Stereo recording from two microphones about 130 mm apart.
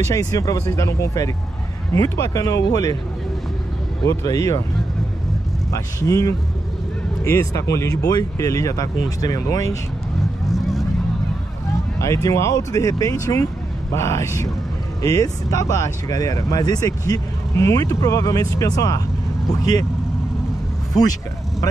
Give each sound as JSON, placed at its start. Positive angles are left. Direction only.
{"t": 0.0, "sound": "speech", "side_deg": 25}
{"t": 4.0, "sound": "speech", "side_deg": 20}
{"t": 5.7, "sound": "speech", "side_deg": 25}
{"t": 10.5, "sound": "vehicle", "side_deg": 0}
{"t": 12.0, "sound": "speech", "side_deg": 25}